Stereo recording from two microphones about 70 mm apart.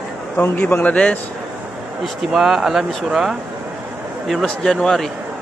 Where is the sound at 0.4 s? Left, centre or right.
Left.